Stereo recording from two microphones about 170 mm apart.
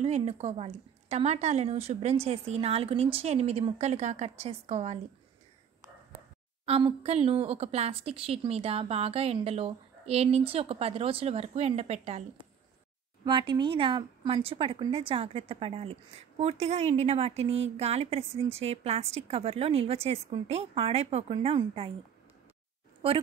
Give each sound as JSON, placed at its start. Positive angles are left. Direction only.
{"t": 0.0, "sound": "speech", "side_deg": -40}
{"t": 6.6, "sound": "speech", "side_deg": -35}
{"t": 13.2, "sound": "speech", "side_deg": -25}